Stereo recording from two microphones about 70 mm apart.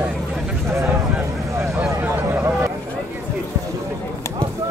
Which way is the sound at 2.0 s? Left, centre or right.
Right.